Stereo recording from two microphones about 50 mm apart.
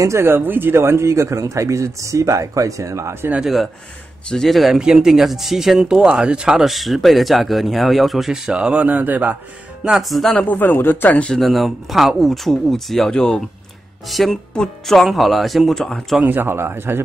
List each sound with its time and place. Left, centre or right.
0.2 s speech: right
4.4 s speech: centre
4.7 s speech: centre
8.5 s speech: right
8.8 s a man's voice: right
10.0 s speech: centre
10.3 s a man's voice: left
11.3 s speech: centre
13.1 s speech: centre
14.0 s speech: centre
15.7 s speech: centre
16.2 s a man's voice: right